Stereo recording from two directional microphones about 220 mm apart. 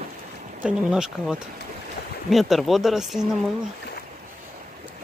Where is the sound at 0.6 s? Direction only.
5° right (ahead or behind).